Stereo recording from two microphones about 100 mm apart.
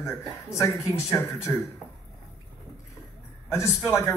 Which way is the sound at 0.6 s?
30° left (ahead or behind).